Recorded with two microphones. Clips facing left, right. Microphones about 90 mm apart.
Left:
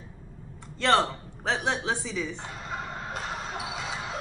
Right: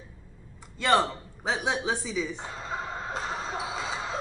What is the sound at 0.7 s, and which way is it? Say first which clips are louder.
A woman's voice: even; 10° right (ahead or behind).